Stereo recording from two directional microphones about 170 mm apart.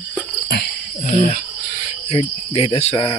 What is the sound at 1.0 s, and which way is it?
Speech, 45° left (ahead or behind).